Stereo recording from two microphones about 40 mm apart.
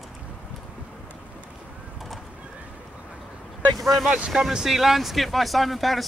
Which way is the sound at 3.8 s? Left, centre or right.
Centre.